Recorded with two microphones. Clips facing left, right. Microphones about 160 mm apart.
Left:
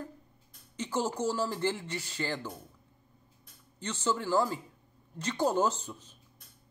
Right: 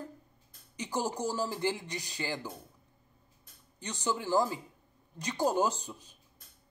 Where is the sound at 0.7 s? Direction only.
15° right (ahead or behind).